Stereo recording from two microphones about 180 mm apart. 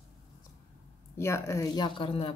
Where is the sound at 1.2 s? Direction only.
15° left (ahead or behind).